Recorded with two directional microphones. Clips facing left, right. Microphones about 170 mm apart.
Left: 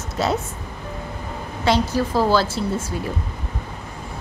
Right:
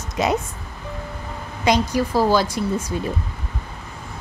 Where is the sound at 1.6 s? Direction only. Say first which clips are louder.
Right 1 dB; 15° right (ahead or behind).